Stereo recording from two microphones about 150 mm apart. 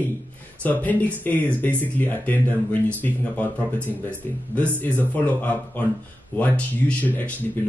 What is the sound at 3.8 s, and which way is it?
Speech, 10° left (ahead or behind).